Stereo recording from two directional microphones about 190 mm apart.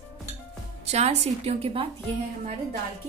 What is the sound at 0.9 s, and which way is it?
Speech, 35° right (ahead or behind).